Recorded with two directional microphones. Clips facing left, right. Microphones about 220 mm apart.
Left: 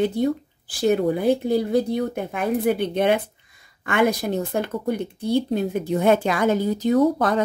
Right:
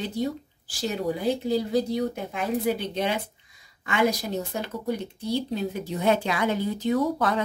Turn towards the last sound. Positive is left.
turn(degrees=45)  # may be behind; listen again after turning